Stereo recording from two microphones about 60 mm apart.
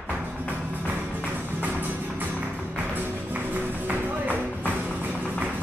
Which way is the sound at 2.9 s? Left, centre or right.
Right.